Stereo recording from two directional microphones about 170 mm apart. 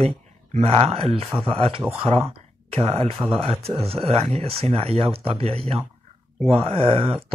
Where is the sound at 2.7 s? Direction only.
35° right (ahead or behind).